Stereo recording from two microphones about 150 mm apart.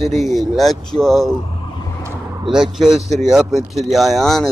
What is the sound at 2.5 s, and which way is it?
Speech, 5° right (ahead or behind).